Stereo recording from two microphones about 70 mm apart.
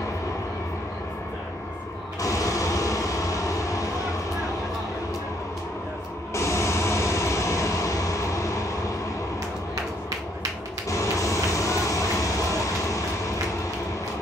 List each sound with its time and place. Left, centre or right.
2.2 s vehicle: left
6.3 s vehicle: left
10.9 s vehicle: left